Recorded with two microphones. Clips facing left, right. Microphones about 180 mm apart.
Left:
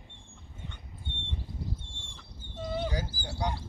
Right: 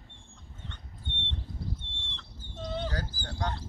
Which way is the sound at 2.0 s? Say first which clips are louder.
Right 1 dB; 10° left (ahead or behind).